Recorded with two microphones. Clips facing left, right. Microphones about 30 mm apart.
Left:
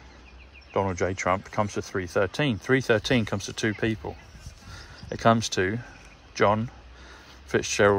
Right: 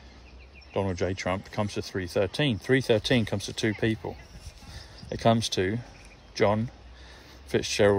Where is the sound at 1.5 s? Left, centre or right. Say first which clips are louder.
Left 3 dB; right.